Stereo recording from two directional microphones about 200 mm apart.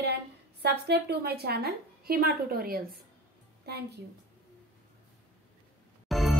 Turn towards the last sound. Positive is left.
turn(degrees=0)  # may be behind; listen again after turning